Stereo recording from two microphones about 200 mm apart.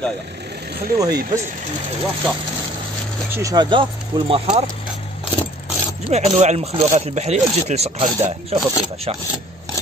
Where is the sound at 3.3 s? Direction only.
15° right (ahead or behind).